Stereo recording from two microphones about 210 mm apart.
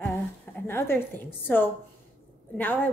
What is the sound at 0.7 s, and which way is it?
A woman's voice, 10° left (ahead or behind).